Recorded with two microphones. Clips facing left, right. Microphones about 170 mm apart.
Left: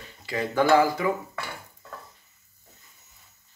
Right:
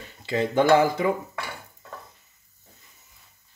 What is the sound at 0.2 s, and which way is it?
Speech, 25° right (ahead or behind).